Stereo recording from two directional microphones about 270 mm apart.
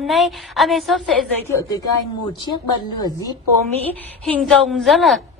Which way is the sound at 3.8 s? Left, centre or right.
Centre.